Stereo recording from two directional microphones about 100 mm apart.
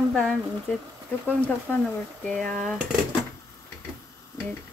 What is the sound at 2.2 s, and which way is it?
Speech, 10° left (ahead or behind).